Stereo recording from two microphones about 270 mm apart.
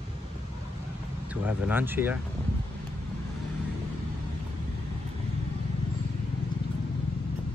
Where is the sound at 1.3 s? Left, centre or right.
Centre.